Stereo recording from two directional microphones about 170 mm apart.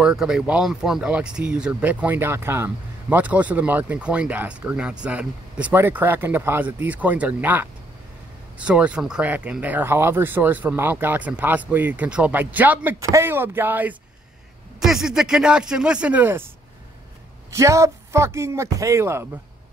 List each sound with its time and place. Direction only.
0.0 s speech: 5° right (ahead or behind)
17.5 s speech: 15° right (ahead or behind)